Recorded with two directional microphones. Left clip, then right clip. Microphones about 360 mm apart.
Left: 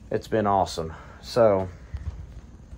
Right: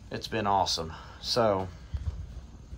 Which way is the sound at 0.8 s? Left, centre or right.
Centre.